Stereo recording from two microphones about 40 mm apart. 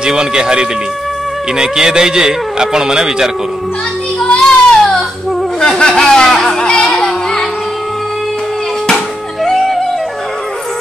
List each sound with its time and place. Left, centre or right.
0.0 s a man's voice: centre
4.2 s child singing: left
5.6 s speech: centre
5.9 s music: centre
8.9 s music: centre